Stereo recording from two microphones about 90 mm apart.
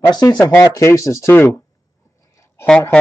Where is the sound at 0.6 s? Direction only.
35° left (ahead or behind).